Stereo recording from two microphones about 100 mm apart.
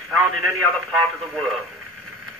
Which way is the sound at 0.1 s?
Centre (ahead or behind).